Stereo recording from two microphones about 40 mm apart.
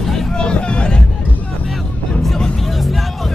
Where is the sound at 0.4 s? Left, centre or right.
Left.